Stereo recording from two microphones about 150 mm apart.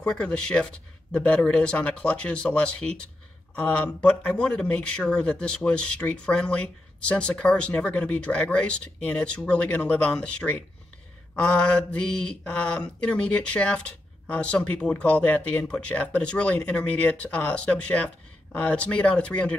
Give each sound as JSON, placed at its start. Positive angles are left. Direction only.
{"t": 0.0, "sound": "speech", "side_deg": 5}
{"t": 11.6, "sound": "speech", "side_deg": 5}